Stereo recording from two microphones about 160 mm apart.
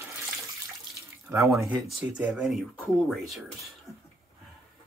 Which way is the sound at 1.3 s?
20° right (ahead or behind).